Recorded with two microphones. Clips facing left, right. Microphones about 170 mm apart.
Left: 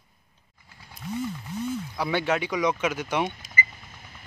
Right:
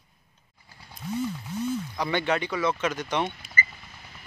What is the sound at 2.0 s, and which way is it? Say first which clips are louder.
Speech: left 2 dB; 5° left (ahead or behind).